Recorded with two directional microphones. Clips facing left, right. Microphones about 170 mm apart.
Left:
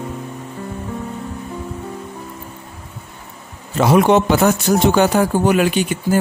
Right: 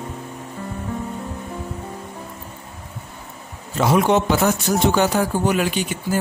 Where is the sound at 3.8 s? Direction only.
70° left (ahead or behind).